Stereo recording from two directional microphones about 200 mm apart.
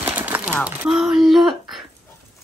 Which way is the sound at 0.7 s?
5° right (ahead or behind).